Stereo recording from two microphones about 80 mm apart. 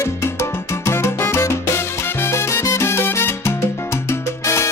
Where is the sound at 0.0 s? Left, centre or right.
Left.